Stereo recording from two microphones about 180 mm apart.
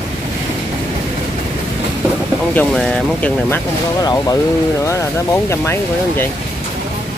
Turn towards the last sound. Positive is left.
turn(degrees=15)  # may be behind; listen again after turning